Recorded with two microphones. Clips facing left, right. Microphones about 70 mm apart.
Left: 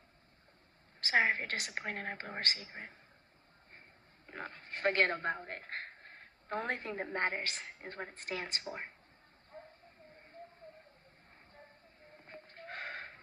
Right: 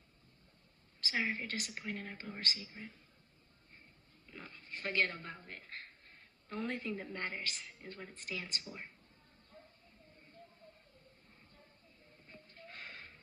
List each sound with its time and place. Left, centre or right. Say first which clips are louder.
1.0 s a woman's voice: left 7 dB; left
4.3 s speech: left 6 dB; left
9.5 s vehicle: left 7 dB; left
10.4 s bird: left 7 dB; left
12.1 s a sound: left 6 dB; left